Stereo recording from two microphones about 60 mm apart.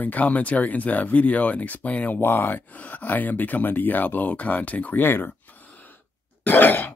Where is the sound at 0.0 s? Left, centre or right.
Left.